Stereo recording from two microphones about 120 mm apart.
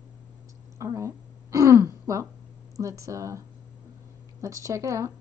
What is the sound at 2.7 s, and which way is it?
Speech, 25° right (ahead or behind).